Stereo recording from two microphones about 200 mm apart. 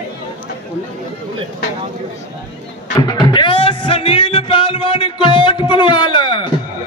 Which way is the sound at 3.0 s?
20° left (ahead or behind).